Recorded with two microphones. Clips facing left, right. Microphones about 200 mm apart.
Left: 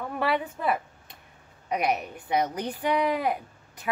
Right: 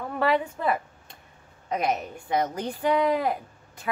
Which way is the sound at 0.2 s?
10° left (ahead or behind).